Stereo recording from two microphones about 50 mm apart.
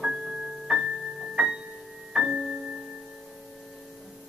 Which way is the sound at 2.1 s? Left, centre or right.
Centre.